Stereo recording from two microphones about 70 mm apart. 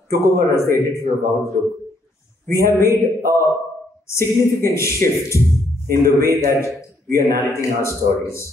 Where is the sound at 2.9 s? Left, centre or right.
Right.